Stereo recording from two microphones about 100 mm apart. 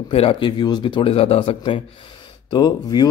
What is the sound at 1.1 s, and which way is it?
Speech, 85° left.